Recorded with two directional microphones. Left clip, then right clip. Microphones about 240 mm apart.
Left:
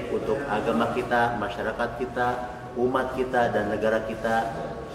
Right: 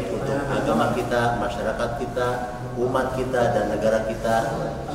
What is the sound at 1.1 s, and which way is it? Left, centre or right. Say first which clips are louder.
A man's voice: right 2 dB; right.